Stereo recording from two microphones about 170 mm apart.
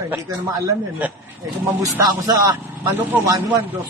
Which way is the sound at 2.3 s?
20° right (ahead or behind).